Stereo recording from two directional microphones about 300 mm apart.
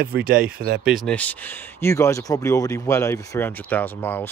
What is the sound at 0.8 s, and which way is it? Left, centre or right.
Speech, centre.